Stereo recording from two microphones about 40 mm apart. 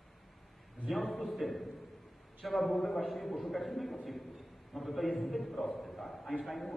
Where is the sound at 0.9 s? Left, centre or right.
Centre.